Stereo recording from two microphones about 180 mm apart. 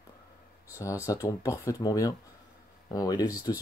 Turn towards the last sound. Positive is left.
turn(degrees=20)  # may be behind; listen again after turning